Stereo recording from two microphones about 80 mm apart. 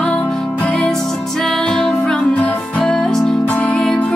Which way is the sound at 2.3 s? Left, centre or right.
Centre.